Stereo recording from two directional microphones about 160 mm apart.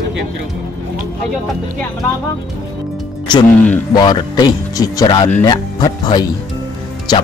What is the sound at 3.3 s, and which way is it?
Speech, 30° left (ahead or behind).